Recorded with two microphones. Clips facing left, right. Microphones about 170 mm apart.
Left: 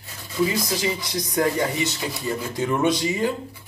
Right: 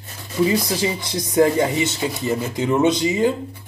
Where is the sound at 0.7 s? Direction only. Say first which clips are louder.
Right 2 dB; 25° right (ahead or behind).